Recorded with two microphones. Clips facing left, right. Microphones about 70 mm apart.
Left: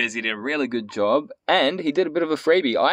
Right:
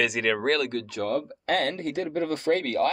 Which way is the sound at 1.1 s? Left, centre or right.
Left.